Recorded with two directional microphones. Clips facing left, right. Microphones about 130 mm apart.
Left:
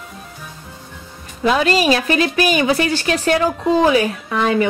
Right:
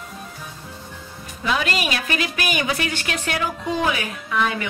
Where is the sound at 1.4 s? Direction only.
35° left (ahead or behind).